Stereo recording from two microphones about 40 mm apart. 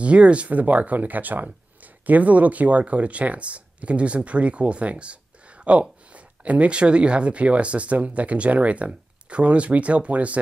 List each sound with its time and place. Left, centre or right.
0.0 s speech: right
0.6 s speech: right